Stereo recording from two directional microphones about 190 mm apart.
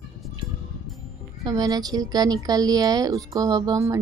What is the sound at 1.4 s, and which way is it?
Speech, 20° right (ahead or behind).